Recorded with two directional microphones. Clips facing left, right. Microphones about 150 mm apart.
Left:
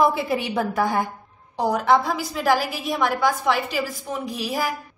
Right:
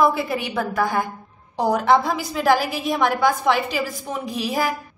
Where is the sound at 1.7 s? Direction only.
Centre (ahead or behind).